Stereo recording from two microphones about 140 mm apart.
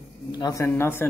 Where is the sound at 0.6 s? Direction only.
15° left (ahead or behind).